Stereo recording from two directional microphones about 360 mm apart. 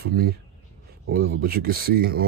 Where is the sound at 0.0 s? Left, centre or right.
Right.